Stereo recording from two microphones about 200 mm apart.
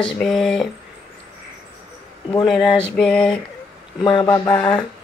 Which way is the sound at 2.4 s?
Centre (ahead or behind).